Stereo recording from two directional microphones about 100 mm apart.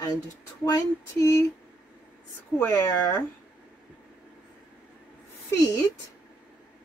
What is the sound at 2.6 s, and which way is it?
Speech, 30° left (ahead or behind).